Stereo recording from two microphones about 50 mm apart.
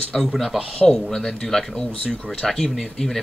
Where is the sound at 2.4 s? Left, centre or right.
Centre.